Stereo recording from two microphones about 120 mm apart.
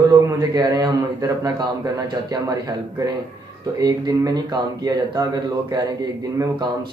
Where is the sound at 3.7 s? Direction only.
30° right (ahead or behind).